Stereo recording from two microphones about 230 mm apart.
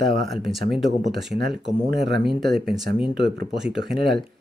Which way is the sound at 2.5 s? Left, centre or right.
Right.